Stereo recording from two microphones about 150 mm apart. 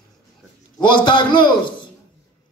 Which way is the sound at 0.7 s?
35° left (ahead or behind).